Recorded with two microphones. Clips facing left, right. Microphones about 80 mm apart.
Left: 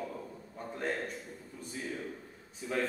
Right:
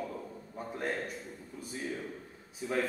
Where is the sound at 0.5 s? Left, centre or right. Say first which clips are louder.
Even; centre.